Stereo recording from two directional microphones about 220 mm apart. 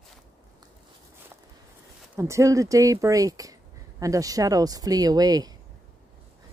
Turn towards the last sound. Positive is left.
turn(degrees=-15)  # may be behind; listen again after turning